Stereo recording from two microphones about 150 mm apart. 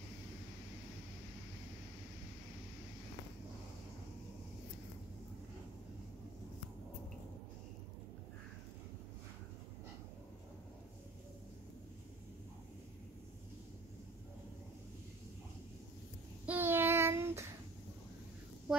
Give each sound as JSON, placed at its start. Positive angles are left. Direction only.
{"t": 16.4, "sound": "child singing", "side_deg": -15}